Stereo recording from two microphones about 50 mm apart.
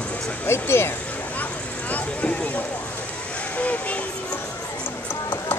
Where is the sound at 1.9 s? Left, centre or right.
Left.